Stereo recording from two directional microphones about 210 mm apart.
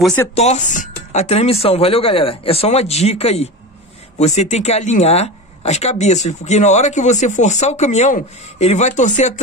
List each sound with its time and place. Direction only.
0.0 s speech: 10° left (ahead or behind)
0.3 s a woman's voice: 30° left (ahead or behind)